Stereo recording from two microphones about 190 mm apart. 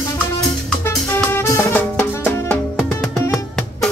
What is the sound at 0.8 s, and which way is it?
Music, 10° left (ahead or behind).